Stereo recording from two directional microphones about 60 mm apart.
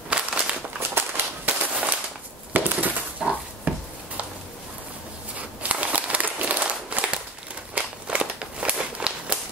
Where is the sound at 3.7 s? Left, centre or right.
Right.